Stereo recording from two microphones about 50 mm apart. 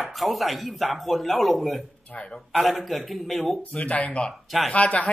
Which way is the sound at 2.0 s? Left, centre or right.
Left.